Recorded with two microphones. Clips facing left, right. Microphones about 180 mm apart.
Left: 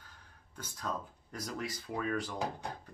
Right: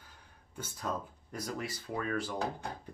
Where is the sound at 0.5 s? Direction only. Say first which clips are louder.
Right 2 dB; 5° right (ahead or behind).